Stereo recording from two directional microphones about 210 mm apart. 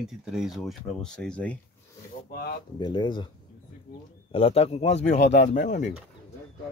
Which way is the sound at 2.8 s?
20° left (ahead or behind).